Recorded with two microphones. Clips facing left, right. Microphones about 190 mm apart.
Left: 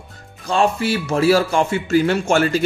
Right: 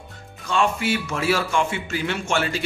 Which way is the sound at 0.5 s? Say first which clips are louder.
Left 4 dB; 35° left (ahead or behind).